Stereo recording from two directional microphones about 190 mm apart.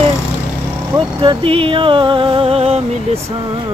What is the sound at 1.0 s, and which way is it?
Speech, 25° right (ahead or behind).